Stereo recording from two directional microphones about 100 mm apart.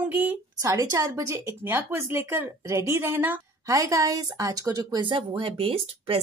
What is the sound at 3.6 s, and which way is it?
A woman's voice, 35° right (ahead or behind).